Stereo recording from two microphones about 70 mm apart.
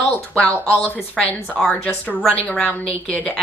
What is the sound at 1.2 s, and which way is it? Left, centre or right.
Speech, centre.